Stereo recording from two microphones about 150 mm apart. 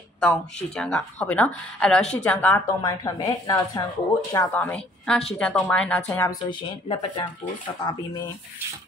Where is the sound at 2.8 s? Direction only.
25° left (ahead or behind).